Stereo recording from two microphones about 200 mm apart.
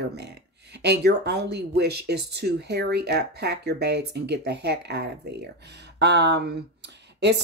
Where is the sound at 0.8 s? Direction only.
55° right (ahead or behind).